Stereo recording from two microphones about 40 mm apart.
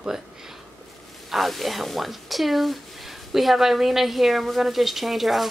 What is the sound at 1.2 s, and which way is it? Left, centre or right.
Speech, centre.